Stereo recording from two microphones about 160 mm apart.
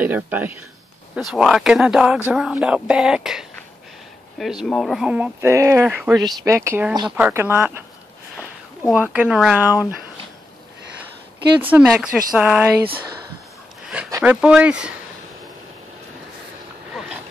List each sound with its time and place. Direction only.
0.0 s speech: 10° right (ahead or behind)
6.1 s speech: 20° right (ahead or behind)
8.9 s speech: 10° right (ahead or behind)
11.7 s speech: 5° right (ahead or behind)
14.2 s speech: 5° right (ahead or behind)